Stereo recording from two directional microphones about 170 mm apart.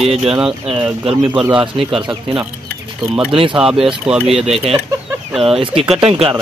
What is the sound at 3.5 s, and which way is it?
Speech, 5° right (ahead or behind).